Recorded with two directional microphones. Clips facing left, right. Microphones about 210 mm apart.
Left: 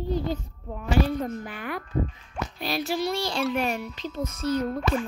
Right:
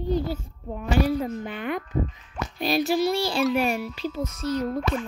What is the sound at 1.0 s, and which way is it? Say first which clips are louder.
Child singing: right 3 dB; 10° right (ahead or behind).